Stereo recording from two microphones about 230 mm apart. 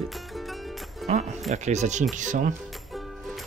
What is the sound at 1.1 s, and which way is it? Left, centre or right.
Speech, right.